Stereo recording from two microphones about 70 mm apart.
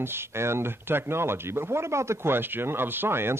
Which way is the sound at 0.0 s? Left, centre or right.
Right.